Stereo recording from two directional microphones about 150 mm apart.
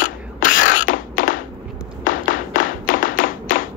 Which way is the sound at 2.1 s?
65° left (ahead or behind).